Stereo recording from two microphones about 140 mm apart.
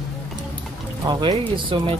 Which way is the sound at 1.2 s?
35° right (ahead or behind).